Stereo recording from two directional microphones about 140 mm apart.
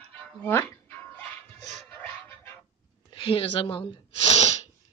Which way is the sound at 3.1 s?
40° left (ahead or behind).